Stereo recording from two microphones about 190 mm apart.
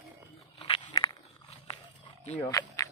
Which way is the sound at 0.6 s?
25° left (ahead or behind).